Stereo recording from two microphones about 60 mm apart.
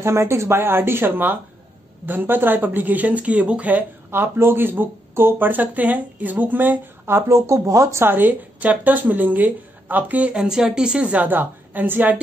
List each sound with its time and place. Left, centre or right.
0.0 s a woman's voice: right
4.1 s speech: right
8.0 s a woman's voice: right